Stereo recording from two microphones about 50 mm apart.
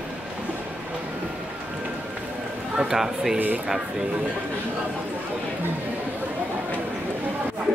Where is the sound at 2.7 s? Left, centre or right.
Centre.